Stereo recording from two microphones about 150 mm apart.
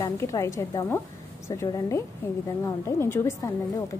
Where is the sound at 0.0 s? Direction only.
20° left (ahead or behind).